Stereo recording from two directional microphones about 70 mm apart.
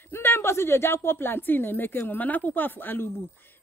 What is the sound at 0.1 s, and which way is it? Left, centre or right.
Speech, left.